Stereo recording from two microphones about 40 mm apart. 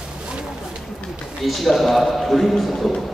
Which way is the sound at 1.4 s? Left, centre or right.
Centre.